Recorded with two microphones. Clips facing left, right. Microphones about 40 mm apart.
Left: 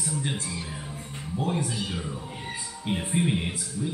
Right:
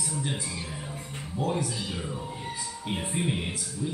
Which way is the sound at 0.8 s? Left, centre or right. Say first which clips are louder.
Even; centre.